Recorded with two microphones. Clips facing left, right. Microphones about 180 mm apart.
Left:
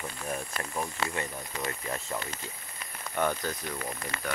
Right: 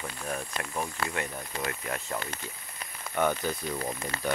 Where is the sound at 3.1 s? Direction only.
5° right (ahead or behind).